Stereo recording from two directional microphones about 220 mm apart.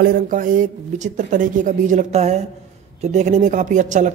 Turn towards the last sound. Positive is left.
turn(degrees=-35)  # may be behind; listen again after turning